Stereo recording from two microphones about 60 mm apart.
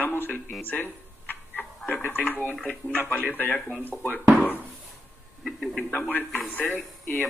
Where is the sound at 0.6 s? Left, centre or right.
Left.